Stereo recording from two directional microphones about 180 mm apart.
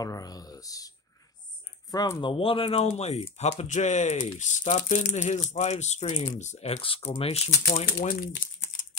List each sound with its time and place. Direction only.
0.0 s speech: 20° left (ahead or behind); by 8.2 s 35° left (ahead or behind)